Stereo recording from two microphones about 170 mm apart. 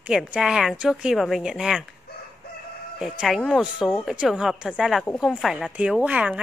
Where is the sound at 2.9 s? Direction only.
Centre (ahead or behind).